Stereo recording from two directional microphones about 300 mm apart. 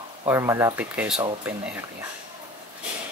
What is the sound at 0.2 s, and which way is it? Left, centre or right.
Speech, centre.